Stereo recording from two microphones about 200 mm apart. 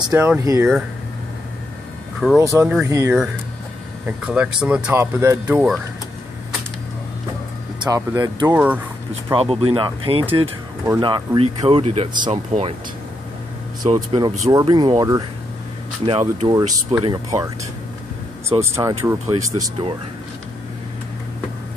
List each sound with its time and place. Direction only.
0.1 s speech: 15° right (ahead or behind)
2.3 s speech: 15° right (ahead or behind)
7.8 s speech: 20° right (ahead or behind)
8.5 s speech: 5° right (ahead or behind)
9.3 s speech: 25° right (ahead or behind)
13.9 s speech: 20° right (ahead or behind)
16.1 s speech: 30° right (ahead or behind)
16.5 s speech: 20° right (ahead or behind)
18.6 s speech: 15° right (ahead or behind)